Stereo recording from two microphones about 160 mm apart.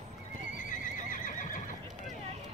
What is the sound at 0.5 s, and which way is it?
Neigh, 55° left (ahead or behind).